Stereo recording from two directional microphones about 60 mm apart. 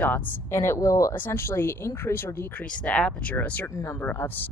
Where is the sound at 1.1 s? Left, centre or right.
Left.